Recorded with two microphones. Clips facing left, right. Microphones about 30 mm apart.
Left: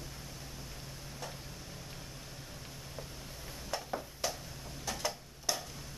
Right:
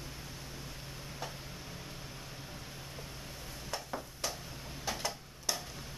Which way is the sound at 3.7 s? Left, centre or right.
Centre.